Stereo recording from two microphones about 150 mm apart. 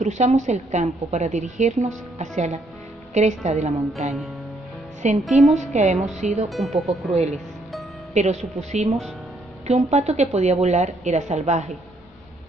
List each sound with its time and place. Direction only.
0.0 s a woman's voice: 50° right (ahead or behind)
5.2 s a woman's voice: centre (ahead or behind)
5.5 s a woman's voice: 50° right (ahead or behind)
6.5 s a woman's voice: centre (ahead or behind)
8.1 s a woman's voice: 50° right (ahead or behind)